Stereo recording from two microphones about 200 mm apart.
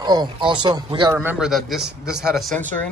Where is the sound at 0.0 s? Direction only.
20° right (ahead or behind).